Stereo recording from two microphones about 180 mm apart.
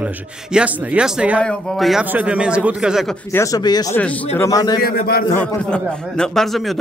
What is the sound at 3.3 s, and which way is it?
Speech, 15° left (ahead or behind).